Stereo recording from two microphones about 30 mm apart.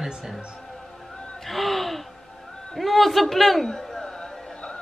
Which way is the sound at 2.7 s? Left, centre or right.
Centre.